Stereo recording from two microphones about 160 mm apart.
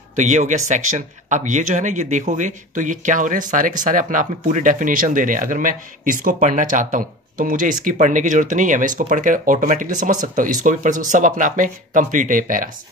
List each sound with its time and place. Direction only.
0.2 s speech: 50° right (ahead or behind)